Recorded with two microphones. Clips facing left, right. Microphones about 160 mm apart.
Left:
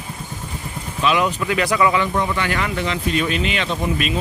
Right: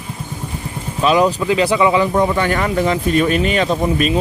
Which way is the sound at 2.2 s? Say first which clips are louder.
Right 6 dB; 45° right (ahead or behind).